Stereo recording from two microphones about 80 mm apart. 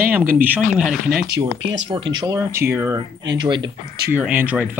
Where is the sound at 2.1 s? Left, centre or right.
Right.